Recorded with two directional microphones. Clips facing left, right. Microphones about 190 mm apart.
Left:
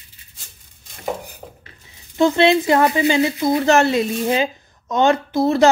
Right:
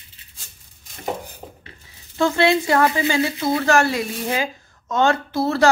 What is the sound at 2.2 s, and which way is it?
Speech, 20° left (ahead or behind).